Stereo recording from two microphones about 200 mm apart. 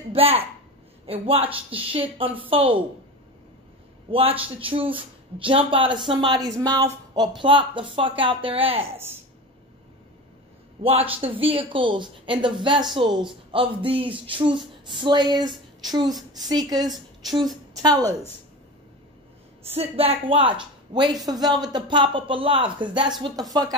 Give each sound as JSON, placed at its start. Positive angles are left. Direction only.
{"t": 0.1, "sound": "a woman's voice", "side_deg": -30}
{"t": 4.1, "sound": "speech", "side_deg": -30}
{"t": 8.9, "sound": "speech", "side_deg": -10}
{"t": 10.8, "sound": "speech", "side_deg": -30}
{"t": 19.7, "sound": "speech", "side_deg": -30}